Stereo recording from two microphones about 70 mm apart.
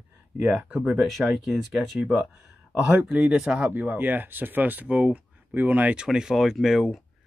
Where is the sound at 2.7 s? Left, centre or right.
Centre.